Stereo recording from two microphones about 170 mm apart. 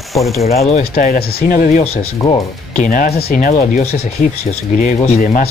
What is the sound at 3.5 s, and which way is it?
Speech, 40° left (ahead or behind).